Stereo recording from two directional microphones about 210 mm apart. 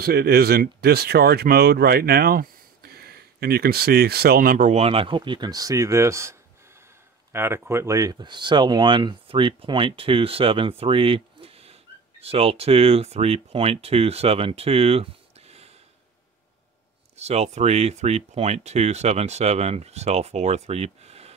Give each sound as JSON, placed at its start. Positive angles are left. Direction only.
{"t": 0.0, "sound": "speech", "side_deg": -45}
{"t": 7.3, "sound": "speech", "side_deg": -10}
{"t": 17.2, "sound": "speech", "side_deg": -30}